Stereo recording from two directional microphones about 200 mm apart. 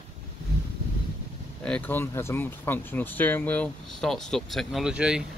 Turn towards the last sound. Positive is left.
turn(degrees=-5)  # may be behind; listen again after turning